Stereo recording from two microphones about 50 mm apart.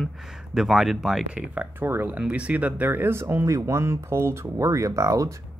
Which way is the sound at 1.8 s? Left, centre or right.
Right.